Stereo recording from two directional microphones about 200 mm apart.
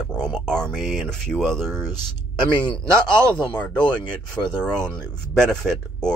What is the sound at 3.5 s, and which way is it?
Speech, 5° left (ahead or behind).